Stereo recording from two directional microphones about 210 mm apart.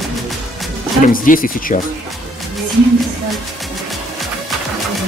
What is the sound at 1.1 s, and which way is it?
Speech, 45° left (ahead or behind).